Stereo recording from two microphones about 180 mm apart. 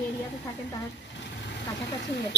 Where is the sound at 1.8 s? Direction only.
70° left (ahead or behind).